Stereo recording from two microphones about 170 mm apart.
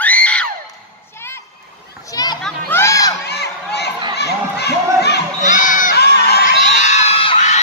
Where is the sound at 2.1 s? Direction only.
20° left (ahead or behind).